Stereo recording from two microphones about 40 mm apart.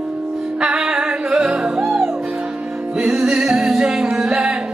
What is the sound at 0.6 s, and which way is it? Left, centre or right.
Music, centre.